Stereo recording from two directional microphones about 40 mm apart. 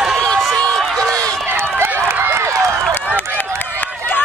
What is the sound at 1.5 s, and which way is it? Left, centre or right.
Run, right.